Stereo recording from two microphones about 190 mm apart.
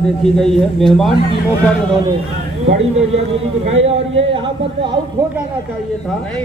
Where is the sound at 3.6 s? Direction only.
30° right (ahead or behind).